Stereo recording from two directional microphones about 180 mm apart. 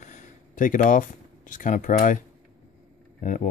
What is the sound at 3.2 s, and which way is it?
Speech, 50° left (ahead or behind).